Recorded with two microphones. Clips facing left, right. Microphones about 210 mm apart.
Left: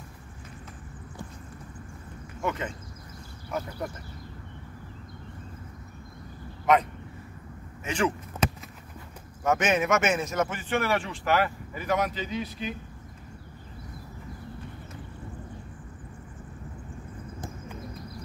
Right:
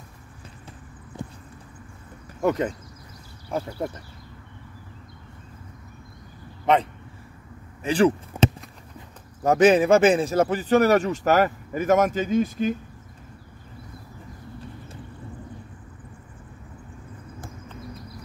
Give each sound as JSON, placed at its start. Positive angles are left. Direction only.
{"t": 2.4, "sound": "speech", "side_deg": -35}
{"t": 6.6, "sound": "speech", "side_deg": -30}
{"t": 8.3, "sound": "a sound", "side_deg": -10}
{"t": 9.4, "sound": "speech", "side_deg": -35}